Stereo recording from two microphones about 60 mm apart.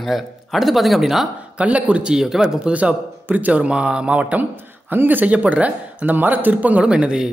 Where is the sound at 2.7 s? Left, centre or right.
Right.